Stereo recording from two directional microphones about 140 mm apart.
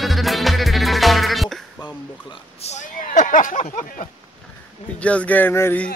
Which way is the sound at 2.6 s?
55° left (ahead or behind).